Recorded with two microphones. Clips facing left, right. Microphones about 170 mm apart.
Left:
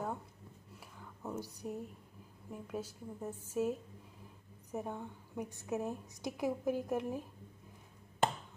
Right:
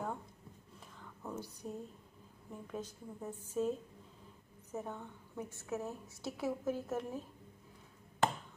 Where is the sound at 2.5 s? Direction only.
10° left (ahead or behind).